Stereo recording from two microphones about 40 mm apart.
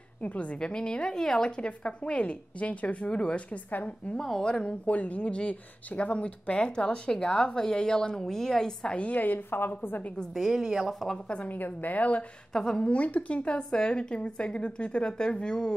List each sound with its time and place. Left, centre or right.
0.2 s speech: left
0.6 s speech: left
4.5 s speech: left
4.8 s a woman's voice: left; by 8.9 s centre
9.1 s a woman's voice: left
10.3 s a woman's voice: centre
10.9 s a woman's voice: centre
11.4 s a woman's voice: left
12.5 s a woman's voice: centre
12.8 s speech: left